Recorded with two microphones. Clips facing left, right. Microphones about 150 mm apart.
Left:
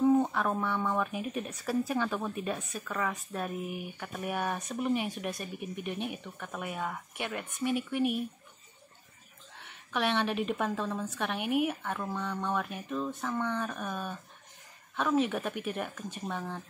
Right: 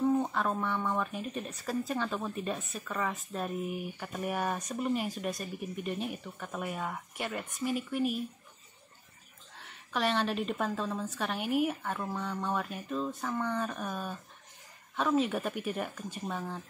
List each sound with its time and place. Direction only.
0.0 s speech: 5° left (ahead or behind)
9.9 s speech: centre (ahead or behind)
15.2 s speech: centre (ahead or behind)